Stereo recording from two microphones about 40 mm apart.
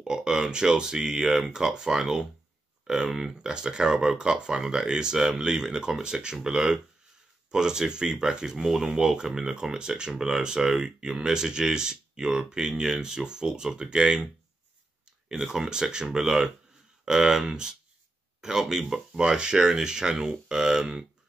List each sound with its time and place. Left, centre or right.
0.0 s speech: centre
3.3 s speech: right